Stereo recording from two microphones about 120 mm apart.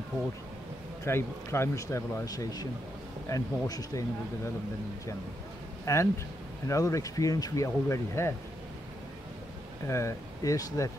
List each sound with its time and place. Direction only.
1.0 s speech: 20° left (ahead or behind)
5.9 s speech: 25° left (ahead or behind)
9.8 s speech: 25° left (ahead or behind)